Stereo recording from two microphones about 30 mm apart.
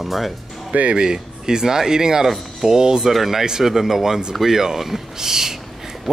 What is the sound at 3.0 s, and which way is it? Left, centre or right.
Speech, centre.